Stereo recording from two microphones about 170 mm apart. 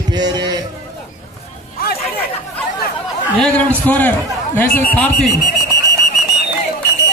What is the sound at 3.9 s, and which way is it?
A man's voice, 10° left (ahead or behind).